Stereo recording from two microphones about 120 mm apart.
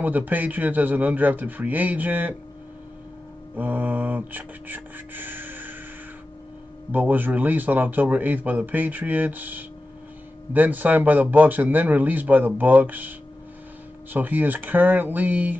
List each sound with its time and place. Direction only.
0.0 s speech: 15° right (ahead or behind)
3.5 s speech: 15° right (ahead or behind)
6.9 s speech: 15° right (ahead or behind)
14.1 s speech: 15° right (ahead or behind)